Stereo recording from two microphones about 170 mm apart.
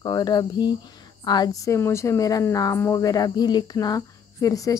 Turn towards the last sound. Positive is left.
turn(degrees=20)  # may be behind; listen again after turning